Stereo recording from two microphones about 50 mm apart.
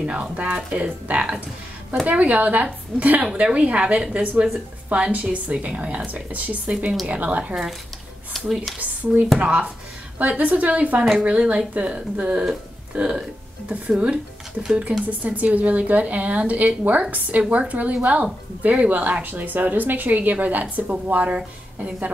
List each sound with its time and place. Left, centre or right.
0.0 s a woman's voice: right
9.0 s a woman's voice: right